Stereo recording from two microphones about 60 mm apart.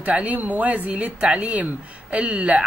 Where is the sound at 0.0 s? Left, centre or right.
Right.